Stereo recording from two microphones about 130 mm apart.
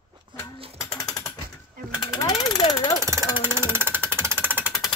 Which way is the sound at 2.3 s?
45° left (ahead or behind).